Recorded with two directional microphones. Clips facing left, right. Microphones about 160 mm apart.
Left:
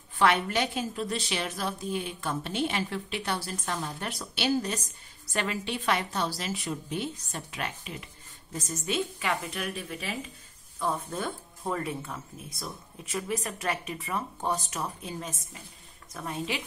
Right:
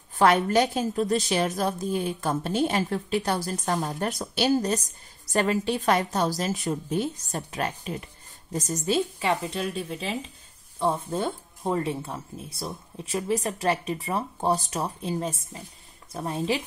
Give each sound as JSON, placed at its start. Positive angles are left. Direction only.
{"t": 0.2, "sound": "a woman's voice", "side_deg": -40}